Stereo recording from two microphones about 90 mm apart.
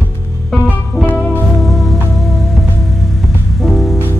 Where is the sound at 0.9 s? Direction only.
Centre (ahead or behind).